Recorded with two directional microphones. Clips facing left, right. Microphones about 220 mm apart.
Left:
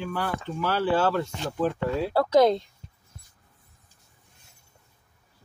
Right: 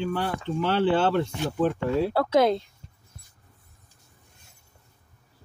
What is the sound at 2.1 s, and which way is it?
Speech, centre (ahead or behind).